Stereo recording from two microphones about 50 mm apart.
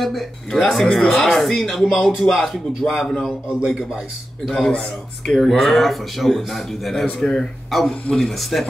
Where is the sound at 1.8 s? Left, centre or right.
Centre.